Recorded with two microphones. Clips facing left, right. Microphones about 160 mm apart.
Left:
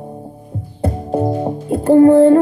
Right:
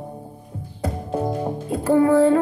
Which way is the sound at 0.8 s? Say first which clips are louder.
Left 6 dB; 30° left (ahead or behind).